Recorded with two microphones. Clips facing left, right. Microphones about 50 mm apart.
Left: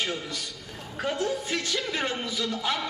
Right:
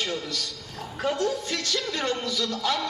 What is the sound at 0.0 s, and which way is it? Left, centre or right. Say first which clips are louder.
A man's voice: right 1 dB; centre.